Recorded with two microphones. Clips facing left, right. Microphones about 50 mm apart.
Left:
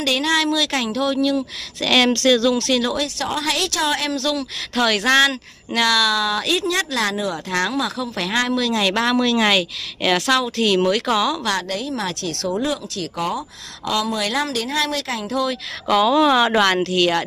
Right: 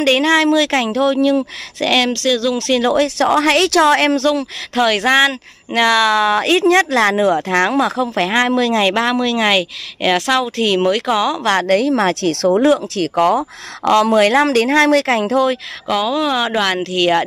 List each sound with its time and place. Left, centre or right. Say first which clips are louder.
0.0 s speech: right 6 dB; right
2.0 s speech: left 2 dB; centre
2.5 s speech: right 5 dB; right
3.2 s speech: right 9 dB; right
4.7 s speech: right 3 dB; centre
5.7 s speech: right 5 dB; right
11.3 s speech: right 7 dB; right
11.6 s speech: right 11 dB; right
12.4 s speech: right 10 dB; right
15.9 s speech: left 2 dB; centre
16.8 s speech: right 3 dB; centre